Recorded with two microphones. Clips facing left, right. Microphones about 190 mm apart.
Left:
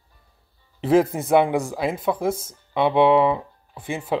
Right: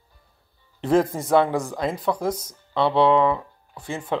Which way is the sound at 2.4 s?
20° left (ahead or behind).